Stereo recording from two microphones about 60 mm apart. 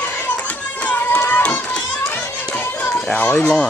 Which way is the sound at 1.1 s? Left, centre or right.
Left.